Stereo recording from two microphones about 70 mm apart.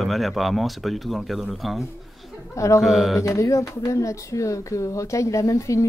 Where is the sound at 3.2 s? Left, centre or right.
Left.